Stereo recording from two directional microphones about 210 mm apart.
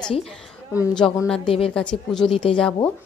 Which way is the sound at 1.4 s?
25° left (ahead or behind).